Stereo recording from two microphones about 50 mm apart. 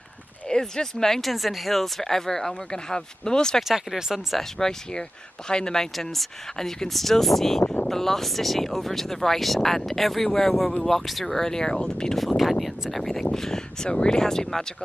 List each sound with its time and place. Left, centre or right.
0.5 s speech: centre
1.3 s speech: centre
3.6 s speech: centre
4.4 s speech: centre
12.2 s speech: centre